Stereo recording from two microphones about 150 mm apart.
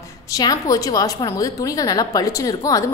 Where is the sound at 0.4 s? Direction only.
25° left (ahead or behind).